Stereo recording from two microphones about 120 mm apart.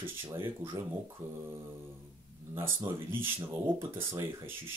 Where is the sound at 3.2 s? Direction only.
20° right (ahead or behind).